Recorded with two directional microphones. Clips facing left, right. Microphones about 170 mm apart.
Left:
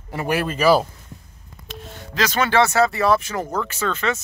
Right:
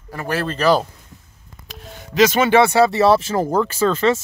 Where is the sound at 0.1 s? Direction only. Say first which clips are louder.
Left 1 dB; 15° left (ahead or behind).